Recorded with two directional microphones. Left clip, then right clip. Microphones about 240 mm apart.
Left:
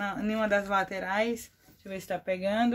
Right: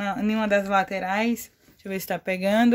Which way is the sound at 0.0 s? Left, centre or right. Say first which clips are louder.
Right 4 dB; right.